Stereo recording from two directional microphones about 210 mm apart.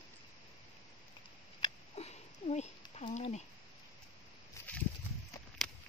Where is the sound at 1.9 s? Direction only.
30° left (ahead or behind).